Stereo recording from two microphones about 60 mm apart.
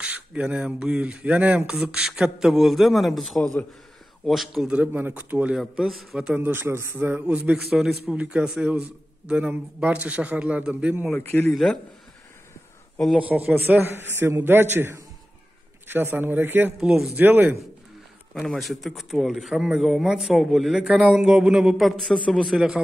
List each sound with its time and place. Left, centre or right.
0.0 s a man's voice: right; by 4.6 s centre
4.9 s a man's voice: right
5.6 s a man's voice: centre
6.3 s a man's voice: right
7.7 s a man's voice: centre
8.2 s a man's voice: right
11.1 s speech: left
13.2 s a man's voice: right
13.7 s a man's voice: right
18.6 s a man's voice: centre
21.9 s a man's voice: centre